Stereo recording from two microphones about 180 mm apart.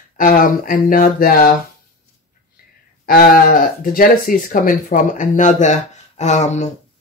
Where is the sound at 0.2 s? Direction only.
50° left (ahead or behind).